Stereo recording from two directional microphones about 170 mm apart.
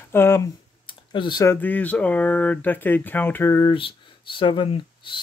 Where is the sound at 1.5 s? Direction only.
10° left (ahead or behind).